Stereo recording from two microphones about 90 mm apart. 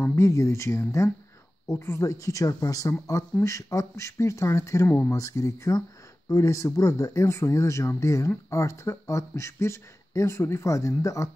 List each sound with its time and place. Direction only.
0.0 s speech: 30° left (ahead or behind)
4.8 s speech: 20° left (ahead or behind)
5.1 s speech: 35° left (ahead or behind)